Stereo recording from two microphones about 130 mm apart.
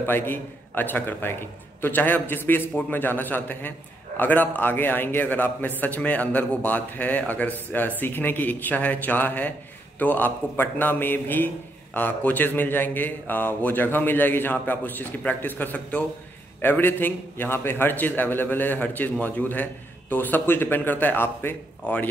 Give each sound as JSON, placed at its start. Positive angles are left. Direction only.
{"t": 0.0, "sound": "a man's voice", "side_deg": 15}